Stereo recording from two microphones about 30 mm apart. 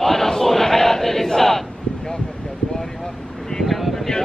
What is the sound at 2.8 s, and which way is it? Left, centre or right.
Vehicle, centre.